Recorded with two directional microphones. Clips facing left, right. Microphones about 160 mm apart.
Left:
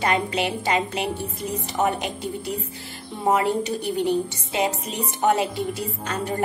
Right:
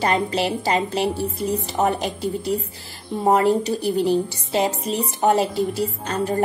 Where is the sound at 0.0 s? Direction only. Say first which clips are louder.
Right 2 dB; 35° right (ahead or behind).